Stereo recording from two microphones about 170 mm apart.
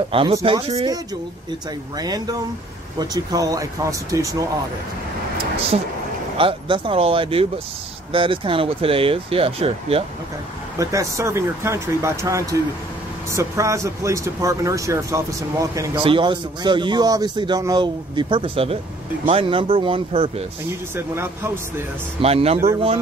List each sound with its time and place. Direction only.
0.1 s speech: 35° right (ahead or behind)
2.0 s a man's voice: 20° right (ahead or behind)
6.3 s speech: 30° right (ahead or behind)
10.8 s speech: 20° right (ahead or behind)
16.0 s a man's voice: 30° right (ahead or behind)
20.9 s speech: 15° right (ahead or behind)
22.2 s speech: 35° right (ahead or behind)